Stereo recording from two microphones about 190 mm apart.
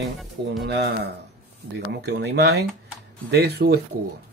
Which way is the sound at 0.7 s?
60° right (ahead or behind).